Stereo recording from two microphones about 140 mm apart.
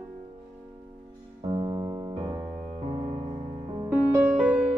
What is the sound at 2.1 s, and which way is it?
Music, 40° right (ahead or behind).